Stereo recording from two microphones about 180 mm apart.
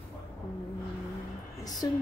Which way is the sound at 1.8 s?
20° left (ahead or behind).